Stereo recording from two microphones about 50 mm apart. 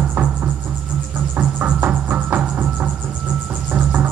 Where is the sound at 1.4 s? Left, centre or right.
Right.